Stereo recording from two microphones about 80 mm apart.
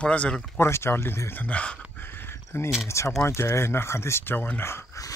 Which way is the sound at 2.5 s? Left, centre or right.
Left.